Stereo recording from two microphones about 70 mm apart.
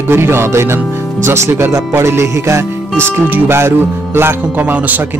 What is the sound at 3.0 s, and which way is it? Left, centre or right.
Speech, right.